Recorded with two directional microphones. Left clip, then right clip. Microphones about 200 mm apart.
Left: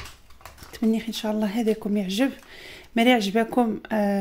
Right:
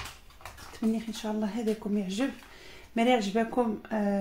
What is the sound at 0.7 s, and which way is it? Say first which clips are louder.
Speech: left 7 dB; 45° left (ahead or behind).